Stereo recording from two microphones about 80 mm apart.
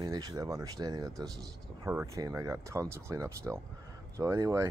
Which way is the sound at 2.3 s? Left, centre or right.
Right.